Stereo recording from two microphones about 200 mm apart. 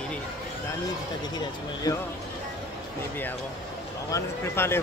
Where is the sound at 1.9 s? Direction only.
20° left (ahead or behind).